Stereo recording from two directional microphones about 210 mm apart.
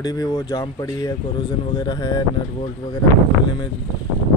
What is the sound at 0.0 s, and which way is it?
Speech, 15° left (ahead or behind).